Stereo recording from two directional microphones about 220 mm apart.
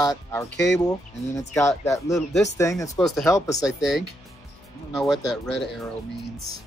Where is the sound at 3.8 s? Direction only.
Centre (ahead or behind).